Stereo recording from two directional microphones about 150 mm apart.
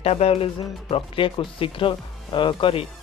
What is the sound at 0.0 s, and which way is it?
Speech, 40° left (ahead or behind).